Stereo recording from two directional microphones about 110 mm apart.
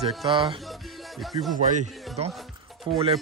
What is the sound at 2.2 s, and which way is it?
Speech, 70° right (ahead or behind).